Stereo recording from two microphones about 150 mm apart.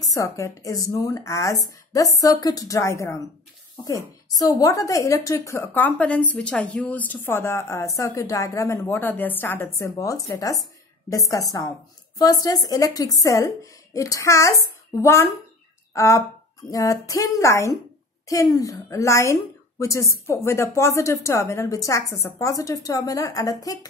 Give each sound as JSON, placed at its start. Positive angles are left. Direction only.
{"t": 0.0, "sound": "a woman's voice", "side_deg": 20}